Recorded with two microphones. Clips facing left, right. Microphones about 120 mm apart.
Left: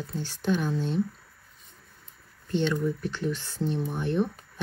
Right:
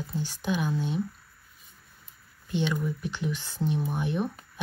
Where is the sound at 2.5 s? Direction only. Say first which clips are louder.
Left 3 dB; 10° right (ahead or behind).